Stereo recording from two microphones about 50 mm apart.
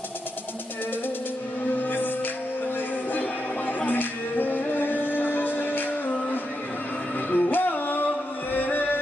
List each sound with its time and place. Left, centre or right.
1.7 s music: left
3.1 s music: left